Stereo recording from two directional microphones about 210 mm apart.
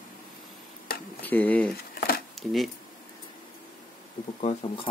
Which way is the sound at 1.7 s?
45° left (ahead or behind).